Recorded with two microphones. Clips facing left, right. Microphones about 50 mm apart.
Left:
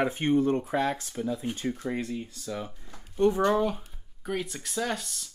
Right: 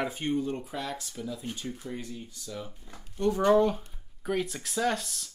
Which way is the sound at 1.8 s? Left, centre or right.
Left.